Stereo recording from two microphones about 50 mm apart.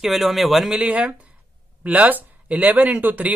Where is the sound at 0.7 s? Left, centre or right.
Right.